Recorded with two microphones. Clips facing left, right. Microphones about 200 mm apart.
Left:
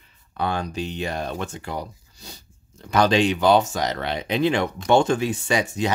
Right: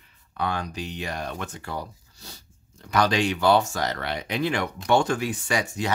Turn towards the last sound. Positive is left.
turn(degrees=20)  # may be behind; listen again after turning